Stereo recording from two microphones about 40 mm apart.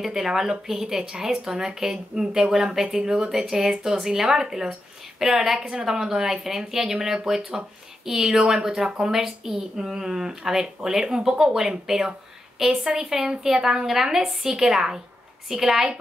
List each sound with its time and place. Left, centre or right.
0.0 s speech: centre